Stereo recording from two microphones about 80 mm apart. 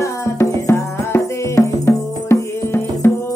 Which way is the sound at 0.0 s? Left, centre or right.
Left.